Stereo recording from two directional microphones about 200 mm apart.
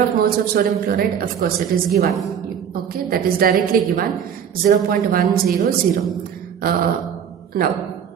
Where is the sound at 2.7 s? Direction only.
45° right (ahead or behind).